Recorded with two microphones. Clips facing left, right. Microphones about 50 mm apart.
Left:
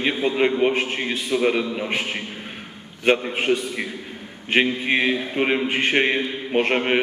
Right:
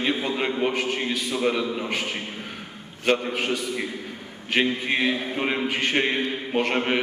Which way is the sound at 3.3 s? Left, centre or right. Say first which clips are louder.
Left 4 dB; left.